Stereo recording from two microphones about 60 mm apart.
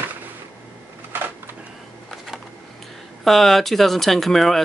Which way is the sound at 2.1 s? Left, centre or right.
Centre.